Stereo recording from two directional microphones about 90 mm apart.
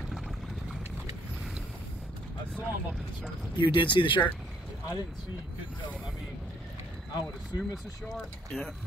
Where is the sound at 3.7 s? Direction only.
65° left (ahead or behind).